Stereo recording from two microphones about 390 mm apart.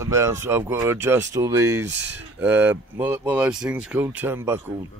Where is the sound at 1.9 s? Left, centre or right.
Right.